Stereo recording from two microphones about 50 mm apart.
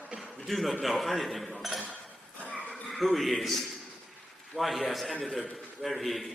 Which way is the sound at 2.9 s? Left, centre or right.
Centre.